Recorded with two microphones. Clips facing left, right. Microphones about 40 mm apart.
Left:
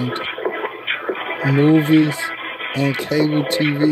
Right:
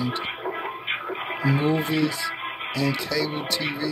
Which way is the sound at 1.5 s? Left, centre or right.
Left.